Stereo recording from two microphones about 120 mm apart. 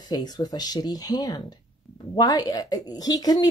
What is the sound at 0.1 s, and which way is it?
Speech, 35° left (ahead or behind).